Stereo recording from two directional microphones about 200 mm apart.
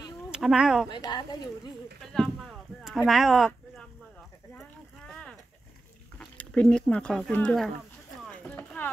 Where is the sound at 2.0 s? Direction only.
Centre (ahead or behind).